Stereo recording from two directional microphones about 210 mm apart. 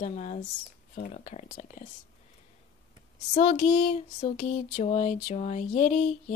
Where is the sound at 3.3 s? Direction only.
35° left (ahead or behind).